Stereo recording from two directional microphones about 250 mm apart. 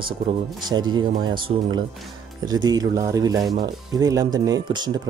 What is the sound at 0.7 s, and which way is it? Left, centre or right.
Speech, centre.